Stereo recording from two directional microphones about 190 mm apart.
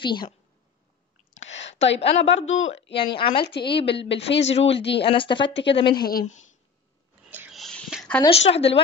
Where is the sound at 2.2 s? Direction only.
85° left.